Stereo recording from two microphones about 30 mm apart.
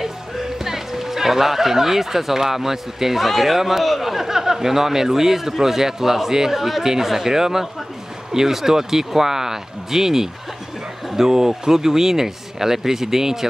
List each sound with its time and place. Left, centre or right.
0.0 s speech: centre